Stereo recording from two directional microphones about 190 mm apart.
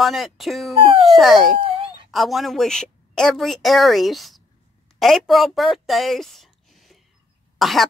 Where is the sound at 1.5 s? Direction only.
30° right (ahead or behind).